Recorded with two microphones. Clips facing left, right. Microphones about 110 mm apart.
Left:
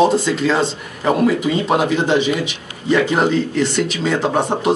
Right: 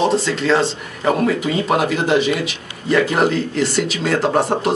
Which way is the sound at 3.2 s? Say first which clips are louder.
Left 1 dB; centre (ahead or behind).